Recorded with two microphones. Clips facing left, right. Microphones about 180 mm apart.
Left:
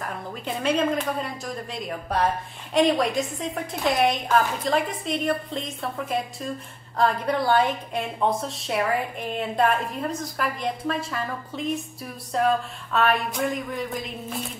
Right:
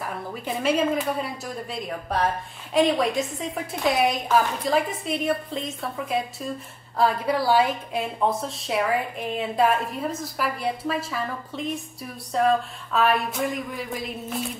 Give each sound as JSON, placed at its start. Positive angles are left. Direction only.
{"t": 0.0, "sound": "a woman's voice", "side_deg": -5}